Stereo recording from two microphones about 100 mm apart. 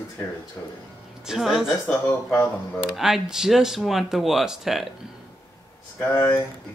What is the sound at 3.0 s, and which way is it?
Speech, 5° right (ahead or behind).